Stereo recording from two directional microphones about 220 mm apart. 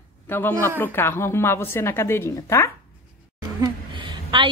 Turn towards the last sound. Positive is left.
turn(degrees=-20)  # may be behind; listen again after turning